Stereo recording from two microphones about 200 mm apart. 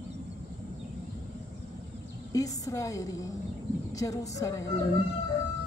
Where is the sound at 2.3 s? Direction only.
15° left (ahead or behind).